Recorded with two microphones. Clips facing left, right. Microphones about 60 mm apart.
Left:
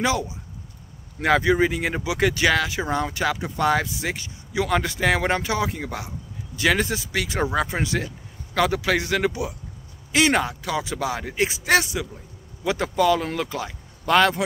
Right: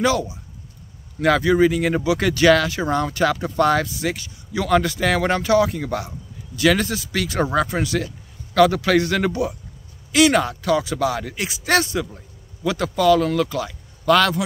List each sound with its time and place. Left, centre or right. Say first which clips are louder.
0.0 s speech: right 4 dB; left
10.1 s speech: right 4 dB; left
11.6 s speech: right 3 dB; centre
12.6 s speech: right 3 dB; left